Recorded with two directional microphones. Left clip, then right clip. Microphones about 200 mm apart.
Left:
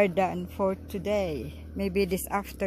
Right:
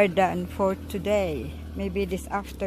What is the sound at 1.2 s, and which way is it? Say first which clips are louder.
Speech: right 3 dB; 15° left (ahead or behind).